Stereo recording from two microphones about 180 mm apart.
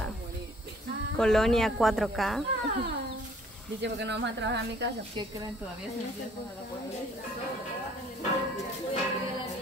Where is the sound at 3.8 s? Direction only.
75° right (ahead or behind).